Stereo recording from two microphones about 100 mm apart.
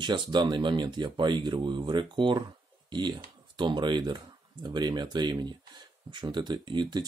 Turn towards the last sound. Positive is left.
turn(degrees=-50)  # may be behind; listen again after turning